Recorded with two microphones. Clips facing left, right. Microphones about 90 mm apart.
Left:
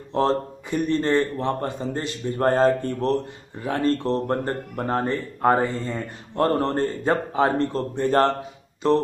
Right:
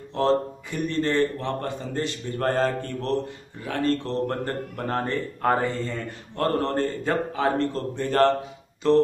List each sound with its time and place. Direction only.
0.1 s speech: 30° left (ahead or behind)